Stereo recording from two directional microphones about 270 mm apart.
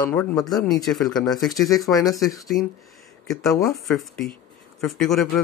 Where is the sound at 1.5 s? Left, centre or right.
Centre.